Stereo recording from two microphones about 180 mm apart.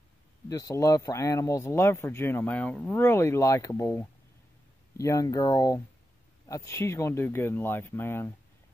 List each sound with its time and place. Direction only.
0.5 s speech: 20° left (ahead or behind)